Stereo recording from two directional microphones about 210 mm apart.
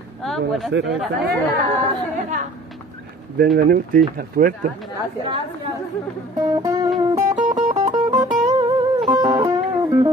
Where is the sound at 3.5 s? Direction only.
45° right (ahead or behind).